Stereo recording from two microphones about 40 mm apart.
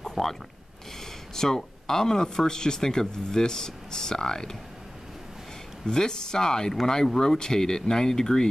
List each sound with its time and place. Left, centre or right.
0.0 s a sound: centre
1.3 s speech: centre
5.9 s speech: centre